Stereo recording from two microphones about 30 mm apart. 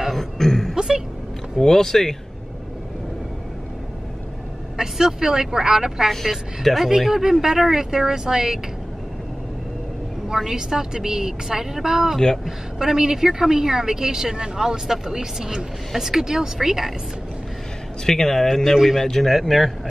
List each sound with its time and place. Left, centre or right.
0.1 s a sound: centre
0.7 s a sound: centre
1.6 s speech: centre
4.7 s a woman's voice: centre
6.7 s speech: centre
7.0 s a woman's voice: centre
7.7 s a woman's voice: centre
10.3 s a woman's voice: centre
18.0 s speech: centre
18.9 s speech: centre
19.2 s speech: centre